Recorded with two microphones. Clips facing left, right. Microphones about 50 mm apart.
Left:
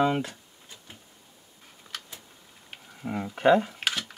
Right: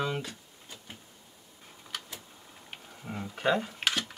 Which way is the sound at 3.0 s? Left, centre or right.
Centre.